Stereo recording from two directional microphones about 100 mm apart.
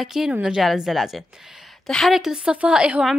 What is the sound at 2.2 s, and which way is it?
A woman's voice, 5° right (ahead or behind).